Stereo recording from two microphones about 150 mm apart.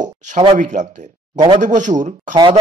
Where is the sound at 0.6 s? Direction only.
55° right (ahead or behind).